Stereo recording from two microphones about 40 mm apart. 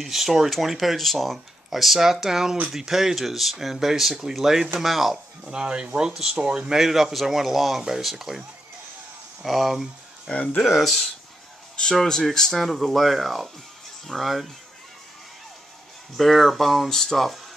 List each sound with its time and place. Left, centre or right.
0.0 s speech: centre
5.4 s speech: right; by 8.4 s centre
9.4 s speech: centre
10.3 s speech: left
10.6 s speech: centre
11.9 s speech: centre
16.2 s speech: centre
16.9 s speech: centre